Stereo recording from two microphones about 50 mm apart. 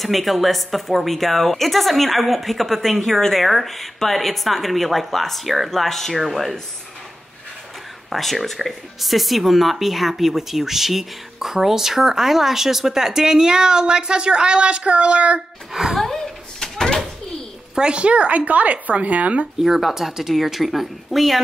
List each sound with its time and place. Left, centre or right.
0.0 s a woman's voice: centre
8.1 s speech: centre; by 15.4 s right
15.7 s speech: centre
16.0 s a sound: centre
17.7 s speech: centre
19.6 s a woman's voice: centre